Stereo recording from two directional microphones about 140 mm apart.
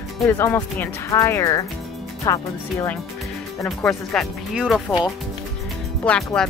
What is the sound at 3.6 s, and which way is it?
Speech, 5° left (ahead or behind).